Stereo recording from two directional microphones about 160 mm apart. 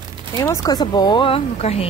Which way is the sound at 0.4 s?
20° left (ahead or behind).